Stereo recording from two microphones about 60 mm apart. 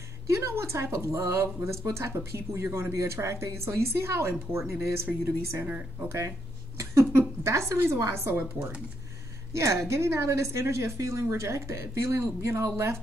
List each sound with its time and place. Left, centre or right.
0.3 s speech: right
9.5 s speech: right